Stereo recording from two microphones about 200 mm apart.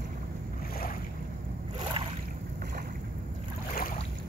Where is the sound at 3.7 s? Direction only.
45° left (ahead or behind).